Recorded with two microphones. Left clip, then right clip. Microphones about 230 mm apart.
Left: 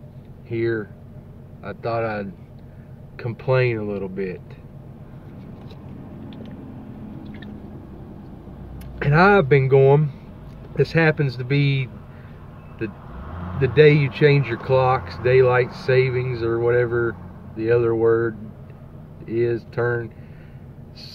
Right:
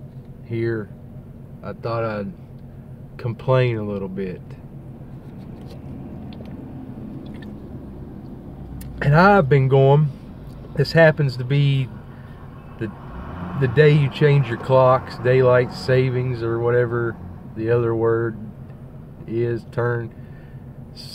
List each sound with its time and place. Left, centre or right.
0.5 s speech: centre
9.0 s speech: centre
13.6 s speech: centre